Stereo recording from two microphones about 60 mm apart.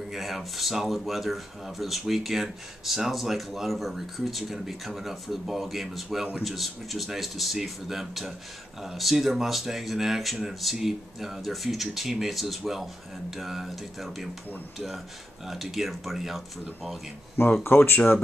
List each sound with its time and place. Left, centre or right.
0.1 s speech: centre
15.4 s speech: centre
17.6 s speech: left